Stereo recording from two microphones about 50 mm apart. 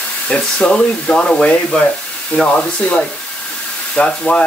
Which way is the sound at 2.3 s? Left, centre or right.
Left.